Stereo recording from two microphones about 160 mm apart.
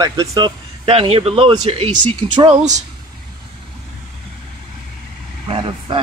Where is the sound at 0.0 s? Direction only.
25° right (ahead or behind).